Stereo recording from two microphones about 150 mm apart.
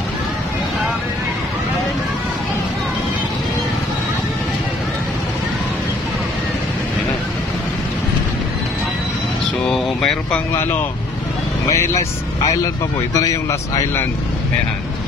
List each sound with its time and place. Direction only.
9.7 s speech: 5° left (ahead or behind)
10.5 s a man's voice: 15° left (ahead or behind)
13.1 s a man's voice: 20° left (ahead or behind)